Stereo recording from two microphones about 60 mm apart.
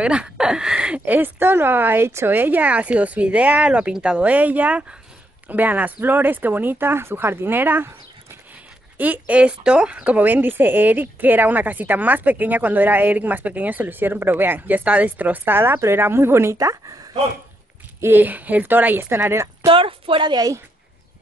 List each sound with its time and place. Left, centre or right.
0.0 s speech: centre
1.0 s speech: right
2.3 s speech: right
16.5 s speech: right
18.0 s speech: right
19.3 s speech: right